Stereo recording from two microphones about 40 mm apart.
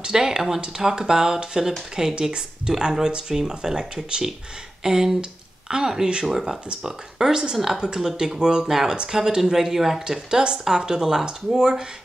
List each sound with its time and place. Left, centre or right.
0.0 s speech: centre
7.2 s speech: centre